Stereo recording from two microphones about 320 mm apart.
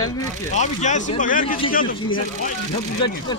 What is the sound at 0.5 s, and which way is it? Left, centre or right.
Speech, left.